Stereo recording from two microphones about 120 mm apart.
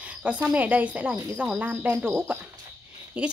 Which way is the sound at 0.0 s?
10° right (ahead or behind).